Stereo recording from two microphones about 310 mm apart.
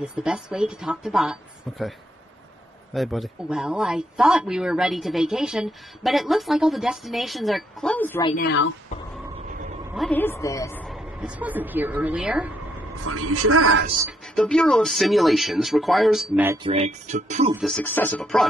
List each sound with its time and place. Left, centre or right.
0.1 s speech: centre
8.4 s speech: left
9.9 s speech: centre
13.0 s a woman's voice: right
13.9 s speech: centre
16.6 s speech: centre
17.6 s speech: centre